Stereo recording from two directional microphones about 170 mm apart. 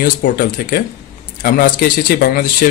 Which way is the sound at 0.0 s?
60° left (ahead or behind).